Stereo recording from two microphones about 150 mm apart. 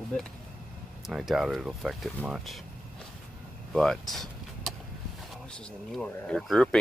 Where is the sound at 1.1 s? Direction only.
Centre (ahead or behind).